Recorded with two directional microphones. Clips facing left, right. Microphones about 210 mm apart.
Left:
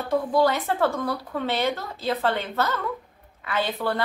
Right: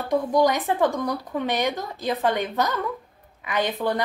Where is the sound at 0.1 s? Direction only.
15° right (ahead or behind).